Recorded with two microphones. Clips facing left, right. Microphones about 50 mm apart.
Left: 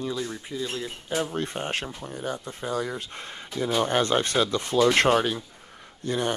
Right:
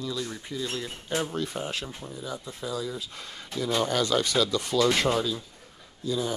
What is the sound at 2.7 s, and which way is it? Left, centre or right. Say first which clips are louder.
Speech: left 3 dB; left.